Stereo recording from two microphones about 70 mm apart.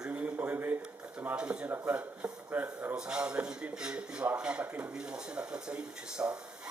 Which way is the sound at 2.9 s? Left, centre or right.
Centre.